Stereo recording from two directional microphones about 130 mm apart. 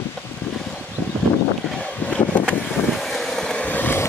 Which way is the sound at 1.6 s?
5° left (ahead or behind).